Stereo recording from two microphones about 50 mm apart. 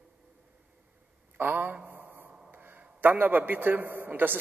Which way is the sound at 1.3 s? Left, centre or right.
Right.